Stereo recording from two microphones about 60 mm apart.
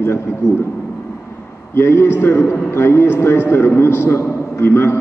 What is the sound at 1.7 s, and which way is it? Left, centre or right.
A man's voice, left.